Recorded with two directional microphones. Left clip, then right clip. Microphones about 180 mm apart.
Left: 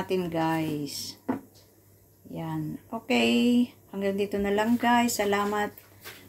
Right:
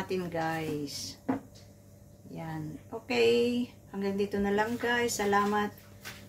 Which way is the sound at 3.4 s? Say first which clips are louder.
Left 6 dB; 15° right (ahead or behind).